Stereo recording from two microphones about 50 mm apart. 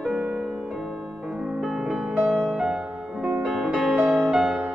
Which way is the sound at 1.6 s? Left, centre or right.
Centre.